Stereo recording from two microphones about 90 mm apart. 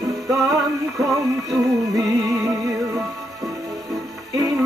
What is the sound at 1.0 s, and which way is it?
Music, 40° right (ahead or behind).